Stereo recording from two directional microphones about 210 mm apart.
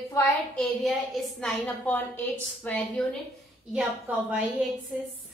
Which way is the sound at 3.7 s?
5° right (ahead or behind).